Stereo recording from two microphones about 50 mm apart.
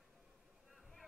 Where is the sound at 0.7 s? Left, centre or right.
Centre.